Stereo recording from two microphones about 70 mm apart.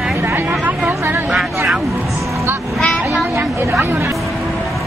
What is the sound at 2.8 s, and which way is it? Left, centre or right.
Vehicle, centre.